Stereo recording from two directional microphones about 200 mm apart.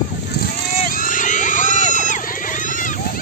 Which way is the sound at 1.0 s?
40° left (ahead or behind).